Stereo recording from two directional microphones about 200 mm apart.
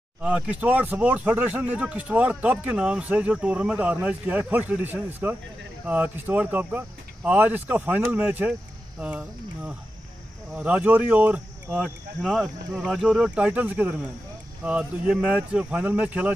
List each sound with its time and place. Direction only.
0.2 s speech: 5° right (ahead or behind)
10.5 s speech: 5° right (ahead or behind)